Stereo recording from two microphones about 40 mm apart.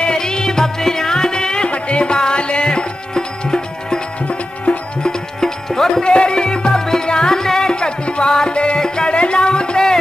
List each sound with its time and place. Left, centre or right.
0.0 s music: centre
5.4 s music: centre
6.0 s music: left